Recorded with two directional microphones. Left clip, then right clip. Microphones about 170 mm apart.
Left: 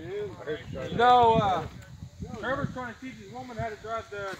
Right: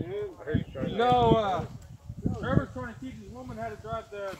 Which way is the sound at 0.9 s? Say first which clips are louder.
Left 3 dB; 60° right (ahead or behind).